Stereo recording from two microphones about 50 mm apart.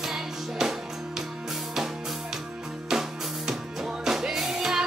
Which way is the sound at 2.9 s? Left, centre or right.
Centre.